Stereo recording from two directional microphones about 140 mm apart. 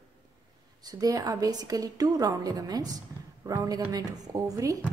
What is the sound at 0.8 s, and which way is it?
A woman's voice, 25° right (ahead or behind).